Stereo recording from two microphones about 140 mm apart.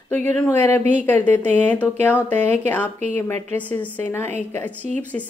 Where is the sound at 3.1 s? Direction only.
15° left (ahead or behind).